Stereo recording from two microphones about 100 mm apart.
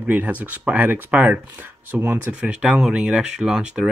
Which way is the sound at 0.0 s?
15° right (ahead or behind).